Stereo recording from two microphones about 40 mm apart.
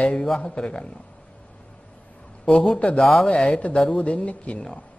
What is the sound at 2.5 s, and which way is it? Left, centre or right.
A man's voice, left.